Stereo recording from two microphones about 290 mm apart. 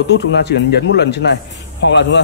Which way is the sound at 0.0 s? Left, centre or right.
Left.